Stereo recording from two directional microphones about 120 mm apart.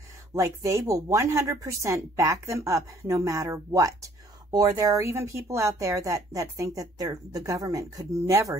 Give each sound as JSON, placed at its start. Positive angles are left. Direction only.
{"t": 0.3, "sound": "speech", "side_deg": -25}